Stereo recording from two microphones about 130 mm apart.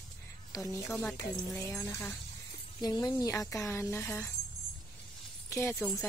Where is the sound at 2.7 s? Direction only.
30° left (ahead or behind); by 4.3 s 15° left (ahead or behind).